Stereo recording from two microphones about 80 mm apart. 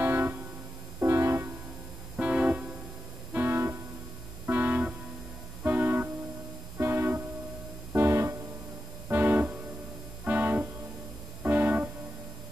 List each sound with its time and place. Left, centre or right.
0.0 s music: right
2.1 s music: centre
3.3 s music: right
9.1 s music: right